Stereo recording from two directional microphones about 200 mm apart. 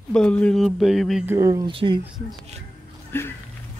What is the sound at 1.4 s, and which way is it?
Speech, 15° right (ahead or behind).